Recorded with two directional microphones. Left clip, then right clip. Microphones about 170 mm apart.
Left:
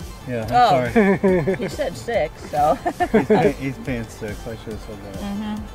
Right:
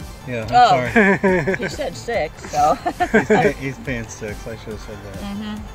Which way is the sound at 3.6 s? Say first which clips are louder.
Right 1 dB; 20° right (ahead or behind).